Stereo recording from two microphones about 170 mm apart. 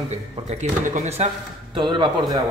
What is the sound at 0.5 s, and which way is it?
Speech, 45° right (ahead or behind).